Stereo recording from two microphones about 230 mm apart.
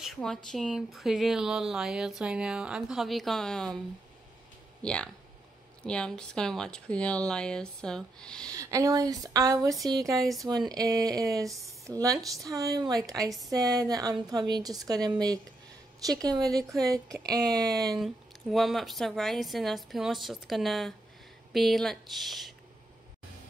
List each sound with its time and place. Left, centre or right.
0.0 s speech: centre
4.8 s speech: centre
8.5 s a woman's voice: centre
17.8 s speech: centre